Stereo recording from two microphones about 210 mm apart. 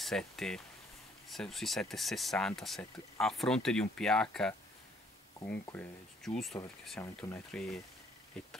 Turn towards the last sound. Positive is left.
turn(degrees=5)  # may be behind; listen again after turning